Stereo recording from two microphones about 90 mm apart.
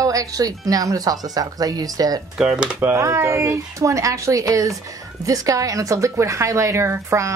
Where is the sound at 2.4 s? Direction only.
10° right (ahead or behind).